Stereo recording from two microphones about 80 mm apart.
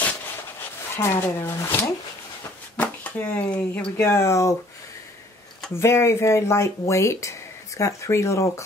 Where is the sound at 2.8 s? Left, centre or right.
Centre.